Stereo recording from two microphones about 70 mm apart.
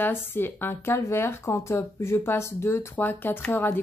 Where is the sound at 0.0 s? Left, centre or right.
Left.